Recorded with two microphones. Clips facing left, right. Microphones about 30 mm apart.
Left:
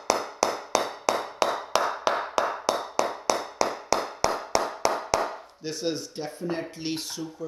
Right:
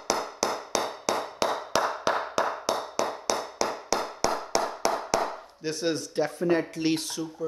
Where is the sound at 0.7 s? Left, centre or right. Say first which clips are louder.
Left 4 dB; centre.